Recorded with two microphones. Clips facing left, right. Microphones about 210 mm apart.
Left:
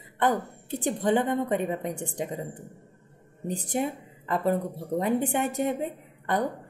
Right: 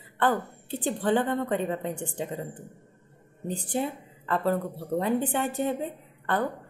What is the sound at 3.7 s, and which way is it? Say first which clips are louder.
A woman's voice: left 1 dB; 15° left (ahead or behind).